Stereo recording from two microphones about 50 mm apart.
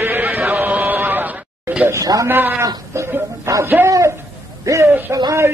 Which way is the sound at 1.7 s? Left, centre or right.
Right.